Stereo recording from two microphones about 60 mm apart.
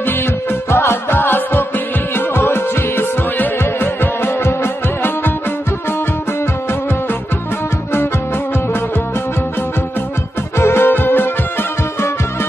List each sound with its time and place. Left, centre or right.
0.0 s music: left
10.6 s music: left
10.9 s music: left